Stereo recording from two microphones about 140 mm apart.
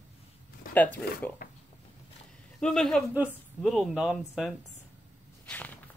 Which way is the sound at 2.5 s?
5° left (ahead or behind).